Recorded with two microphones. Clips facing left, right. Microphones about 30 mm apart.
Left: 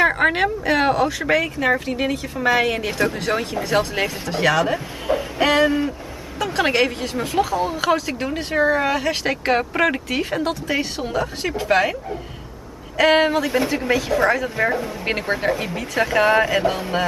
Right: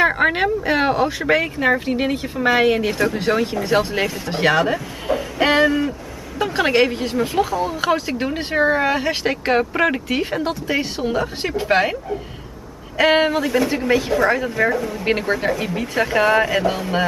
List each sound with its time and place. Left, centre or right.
0.0 s speech: centre
4.3 s speech: centre
4.7 s speech: centre
5.4 s speech: centre
5.9 s vehicle: right
6.6 s speech: centre
7.8 s speech: centre
8.4 s speech: centre